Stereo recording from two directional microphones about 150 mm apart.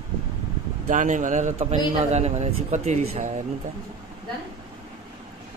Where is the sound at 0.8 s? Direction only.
55° right (ahead or behind).